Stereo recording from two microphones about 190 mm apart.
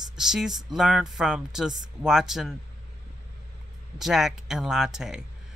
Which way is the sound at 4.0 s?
Centre (ahead or behind).